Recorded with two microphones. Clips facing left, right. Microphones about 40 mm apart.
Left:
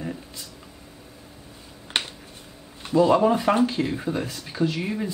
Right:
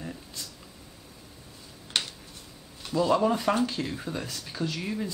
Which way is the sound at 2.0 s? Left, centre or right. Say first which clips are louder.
Left 3 dB; left.